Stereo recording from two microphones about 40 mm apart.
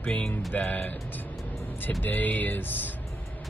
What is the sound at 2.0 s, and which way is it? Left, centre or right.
Speech, left.